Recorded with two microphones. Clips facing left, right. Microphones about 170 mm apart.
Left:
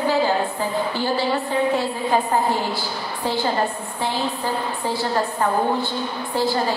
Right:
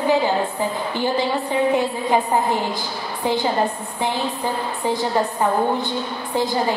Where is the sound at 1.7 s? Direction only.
15° right (ahead or behind).